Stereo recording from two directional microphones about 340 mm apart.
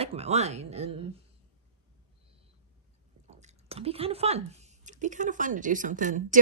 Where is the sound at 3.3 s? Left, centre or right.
Centre.